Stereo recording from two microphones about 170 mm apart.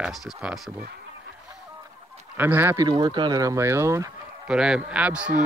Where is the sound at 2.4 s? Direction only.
10° right (ahead or behind).